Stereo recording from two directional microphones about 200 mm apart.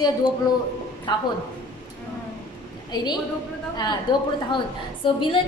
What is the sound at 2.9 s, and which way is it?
A woman's voice, 20° left (ahead or behind).